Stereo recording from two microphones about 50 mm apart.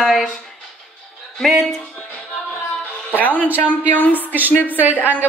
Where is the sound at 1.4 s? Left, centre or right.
Centre.